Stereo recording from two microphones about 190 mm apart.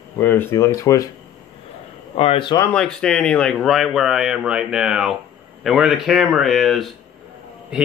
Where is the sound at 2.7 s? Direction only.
5° left (ahead or behind).